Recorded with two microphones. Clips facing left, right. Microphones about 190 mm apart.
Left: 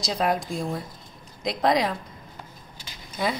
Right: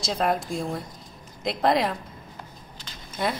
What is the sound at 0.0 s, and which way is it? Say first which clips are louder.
Speech: even; centre (ahead or behind).